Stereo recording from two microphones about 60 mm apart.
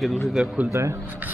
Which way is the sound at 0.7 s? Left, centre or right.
Right.